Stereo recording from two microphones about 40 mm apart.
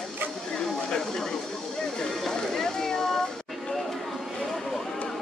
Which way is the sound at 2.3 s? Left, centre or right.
Centre.